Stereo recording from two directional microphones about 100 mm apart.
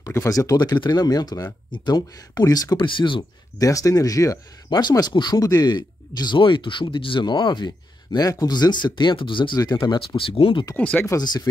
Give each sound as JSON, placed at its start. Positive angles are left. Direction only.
{"t": 0.0, "sound": "speech", "side_deg": 30}
{"t": 3.5, "sound": "speech", "side_deg": 35}
{"t": 10.8, "sound": "speech", "side_deg": 15}
{"t": 11.1, "sound": "speech", "side_deg": 45}